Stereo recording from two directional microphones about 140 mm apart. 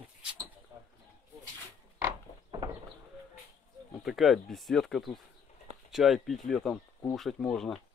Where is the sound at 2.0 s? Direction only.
25° right (ahead or behind).